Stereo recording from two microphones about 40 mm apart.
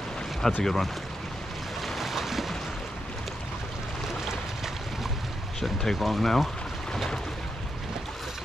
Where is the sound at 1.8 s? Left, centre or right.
Centre.